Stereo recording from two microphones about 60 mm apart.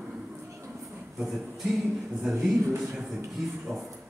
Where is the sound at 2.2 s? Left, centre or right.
Centre.